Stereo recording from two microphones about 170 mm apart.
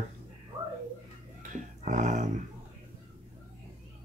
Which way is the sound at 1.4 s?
50° right (ahead or behind).